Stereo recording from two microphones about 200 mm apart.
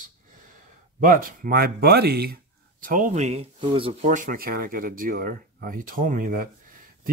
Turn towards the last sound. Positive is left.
turn(degrees=-45)  # may be behind; listen again after turning